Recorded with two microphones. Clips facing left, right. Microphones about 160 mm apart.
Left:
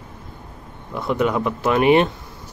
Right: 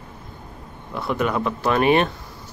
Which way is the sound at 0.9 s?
15° left (ahead or behind).